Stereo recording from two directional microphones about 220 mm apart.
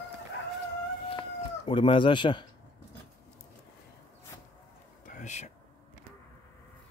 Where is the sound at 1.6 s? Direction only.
20° left (ahead or behind).